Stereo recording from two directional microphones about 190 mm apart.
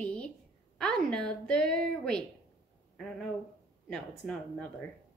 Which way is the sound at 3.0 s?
5° left (ahead or behind).